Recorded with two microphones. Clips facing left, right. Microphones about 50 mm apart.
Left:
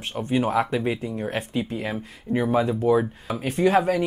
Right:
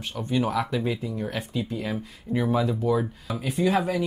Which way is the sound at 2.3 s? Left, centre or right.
Left.